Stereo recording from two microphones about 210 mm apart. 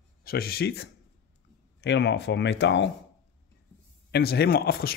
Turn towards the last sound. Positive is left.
turn(degrees=45)  # may be behind; listen again after turning